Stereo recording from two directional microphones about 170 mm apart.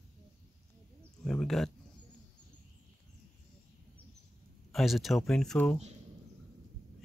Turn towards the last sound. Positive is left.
turn(degrees=5)  # may be behind; listen again after turning